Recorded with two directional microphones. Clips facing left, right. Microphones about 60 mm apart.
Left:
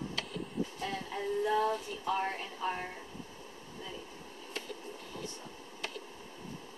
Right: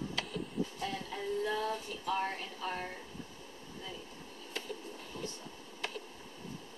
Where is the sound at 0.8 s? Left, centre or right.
Centre.